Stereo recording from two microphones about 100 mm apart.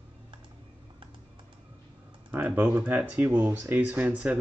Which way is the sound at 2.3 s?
15° right (ahead or behind).